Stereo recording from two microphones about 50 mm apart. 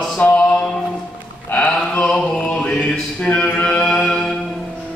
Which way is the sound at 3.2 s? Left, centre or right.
Left.